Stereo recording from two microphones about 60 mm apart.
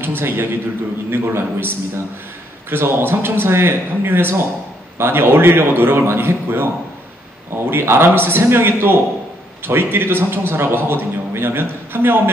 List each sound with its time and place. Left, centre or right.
0.0 s a man's voice: right